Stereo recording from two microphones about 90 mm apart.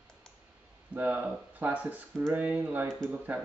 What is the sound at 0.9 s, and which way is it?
Speech, 20° right (ahead or behind).